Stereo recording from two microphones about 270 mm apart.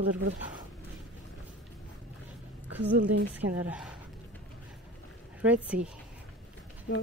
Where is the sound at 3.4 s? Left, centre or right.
Centre.